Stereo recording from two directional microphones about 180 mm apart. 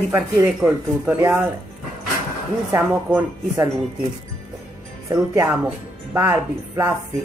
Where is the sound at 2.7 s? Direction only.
10° right (ahead or behind).